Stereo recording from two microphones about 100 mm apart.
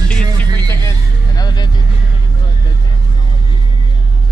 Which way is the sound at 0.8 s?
40° left (ahead or behind).